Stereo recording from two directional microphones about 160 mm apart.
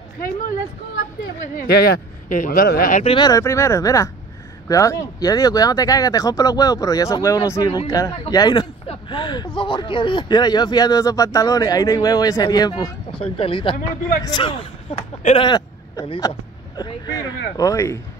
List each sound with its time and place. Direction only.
1.7 s a man's voice: 80° left
2.2 s a man's voice: 55° left (ahead or behind)
3.0 s speech: 35° left (ahead or behind)
3.3 s speech: 20° left (ahead or behind)
8.8 s a sound: 30° left (ahead or behind)
9.6 s speech: 30° left (ahead or behind)